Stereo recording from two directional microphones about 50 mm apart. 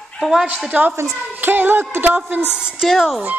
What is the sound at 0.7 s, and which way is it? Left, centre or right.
Speech, right.